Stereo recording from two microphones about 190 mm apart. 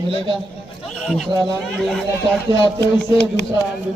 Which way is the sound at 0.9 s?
Centre (ahead or behind).